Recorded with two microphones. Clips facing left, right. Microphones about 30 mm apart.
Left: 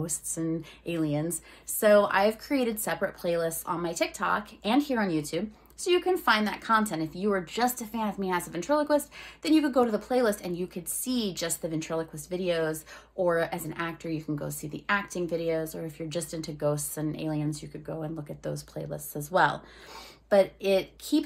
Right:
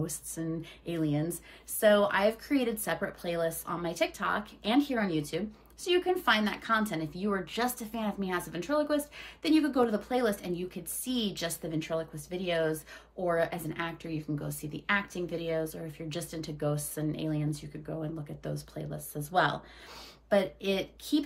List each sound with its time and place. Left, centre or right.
0.0 s a sound: left
0.8 s a woman's voice: left
1.8 s a woman's voice: left
15.3 s a woman's voice: left
17.0 s speech: centre
17.7 s speech: centre
18.4 s speech: left
20.2 s a woman's voice: left